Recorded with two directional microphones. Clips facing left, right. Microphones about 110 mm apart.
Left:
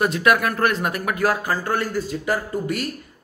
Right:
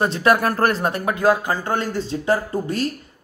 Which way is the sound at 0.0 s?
30° right (ahead or behind).